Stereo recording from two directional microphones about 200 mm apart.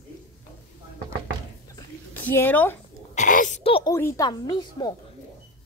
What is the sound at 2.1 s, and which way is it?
Speech, 10° left (ahead or behind).